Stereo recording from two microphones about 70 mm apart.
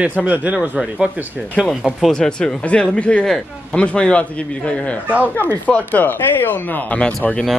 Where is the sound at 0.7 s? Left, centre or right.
Centre.